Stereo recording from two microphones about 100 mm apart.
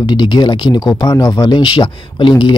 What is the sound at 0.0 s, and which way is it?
Speech, 45° left (ahead or behind).